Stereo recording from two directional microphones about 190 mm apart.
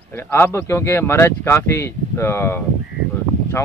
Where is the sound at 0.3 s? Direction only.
10° left (ahead or behind).